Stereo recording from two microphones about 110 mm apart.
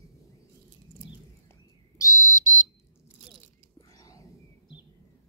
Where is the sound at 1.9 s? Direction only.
30° left (ahead or behind).